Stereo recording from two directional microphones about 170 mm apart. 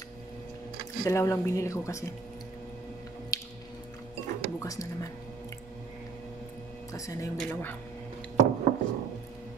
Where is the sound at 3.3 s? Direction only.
20° left (ahead or behind).